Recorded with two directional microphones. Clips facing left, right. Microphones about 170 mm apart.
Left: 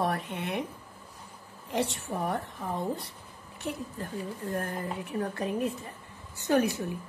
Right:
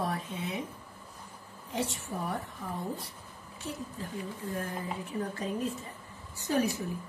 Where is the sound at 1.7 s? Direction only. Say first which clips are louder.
Left 4 dB; 65° left (ahead or behind).